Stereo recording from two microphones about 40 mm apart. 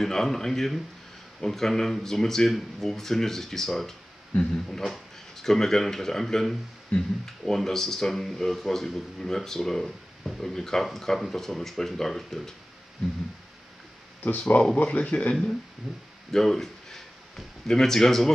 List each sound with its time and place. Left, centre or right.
0.0 s speech: centre
4.3 s speech: left
4.6 s speech: centre
14.8 s speech: left
15.8 s speech: centre
16.3 s a sound: centre
17.6 s speech: centre